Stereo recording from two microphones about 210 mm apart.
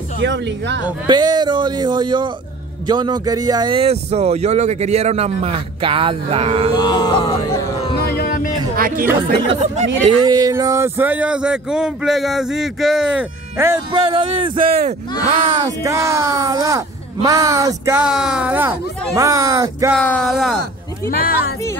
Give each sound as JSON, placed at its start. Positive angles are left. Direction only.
{"t": 0.2, "sound": "a woman's voice", "side_deg": -55}
{"t": 1.0, "sound": "speech", "side_deg": -20}
{"t": 6.7, "sound": "a sound", "side_deg": 20}
{"t": 7.9, "sound": "a sound", "side_deg": 45}
{"t": 8.7, "sound": "speech", "side_deg": -45}
{"t": 9.5, "sound": "speech", "side_deg": -30}
{"t": 10.2, "sound": "speech", "side_deg": -15}
{"t": 13.9, "sound": "speech", "side_deg": -25}
{"t": 14.6, "sound": "speech", "side_deg": -45}
{"t": 15.6, "sound": "speech", "side_deg": -15}
{"t": 19.9, "sound": "speech", "side_deg": 5}
{"t": 21.1, "sound": "speech", "side_deg": 45}